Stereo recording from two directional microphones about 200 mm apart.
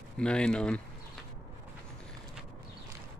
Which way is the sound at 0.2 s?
5° left (ahead or behind).